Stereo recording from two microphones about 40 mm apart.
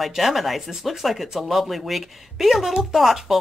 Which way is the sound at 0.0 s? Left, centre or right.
Centre.